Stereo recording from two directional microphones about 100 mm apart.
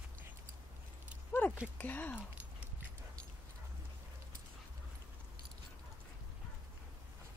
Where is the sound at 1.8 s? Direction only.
15° left (ahead or behind).